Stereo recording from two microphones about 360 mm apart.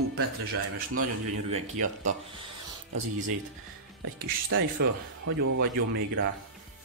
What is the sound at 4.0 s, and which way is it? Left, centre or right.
Speech, right.